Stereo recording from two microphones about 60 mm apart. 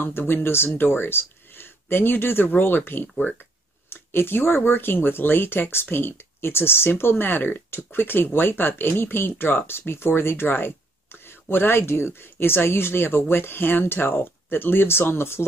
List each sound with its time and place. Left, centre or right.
0.0 s speech: left